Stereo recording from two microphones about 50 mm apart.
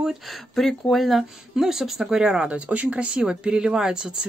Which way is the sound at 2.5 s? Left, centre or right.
Right.